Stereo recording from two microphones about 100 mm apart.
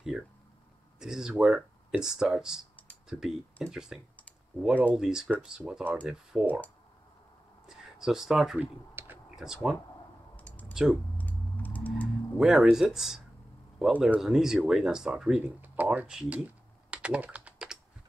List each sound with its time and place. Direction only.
0.9 s speech: 5° right (ahead or behind)
7.6 s speech: 5° right (ahead or behind)
8.5 s computer keyboard: 20° right (ahead or behind)
9.3 s speech: 5° right (ahead or behind)
10.3 s a sound: 15° left (ahead or behind)
10.7 s speech: 5° right (ahead or behind)
11.1 s typing: 15° left (ahead or behind)
12.4 s speech: 5° right (ahead or behind)
15.4 s typing: 15° right (ahead or behind)